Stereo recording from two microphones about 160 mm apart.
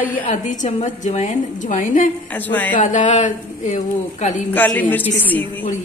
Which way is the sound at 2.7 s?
50° left (ahead or behind).